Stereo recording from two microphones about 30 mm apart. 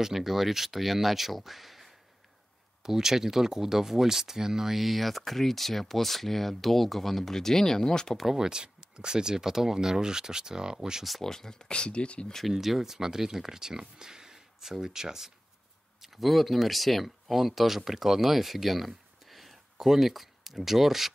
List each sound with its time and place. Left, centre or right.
0.0 s speech: centre
2.8 s speech: centre; by 8.2 s left
8.4 s speech: right
11.2 s speech: centre; by 12.3 s left
12.4 s speech: centre
16.0 s speech: centre